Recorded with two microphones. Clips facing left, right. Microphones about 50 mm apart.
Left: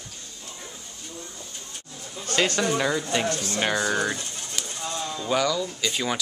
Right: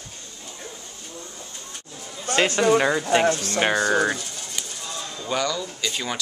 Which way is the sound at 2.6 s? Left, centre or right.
Right.